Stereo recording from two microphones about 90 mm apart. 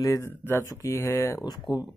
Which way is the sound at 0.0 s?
35° left (ahead or behind).